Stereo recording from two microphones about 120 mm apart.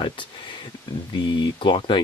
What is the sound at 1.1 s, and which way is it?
Speech, 40° left (ahead or behind).